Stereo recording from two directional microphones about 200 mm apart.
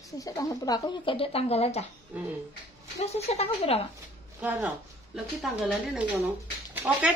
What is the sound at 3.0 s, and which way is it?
Speech, 30° left (ahead or behind).